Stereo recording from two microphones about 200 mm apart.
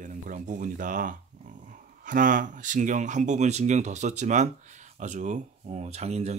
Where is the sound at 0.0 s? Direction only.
40° right (ahead or behind).